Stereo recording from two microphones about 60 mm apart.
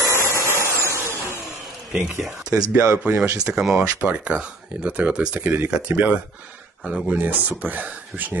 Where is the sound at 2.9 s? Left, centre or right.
Right.